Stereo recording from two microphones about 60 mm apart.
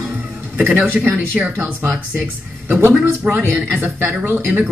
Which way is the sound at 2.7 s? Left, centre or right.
Right.